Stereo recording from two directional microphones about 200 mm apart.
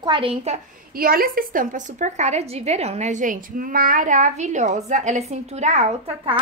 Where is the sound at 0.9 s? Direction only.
45° right (ahead or behind).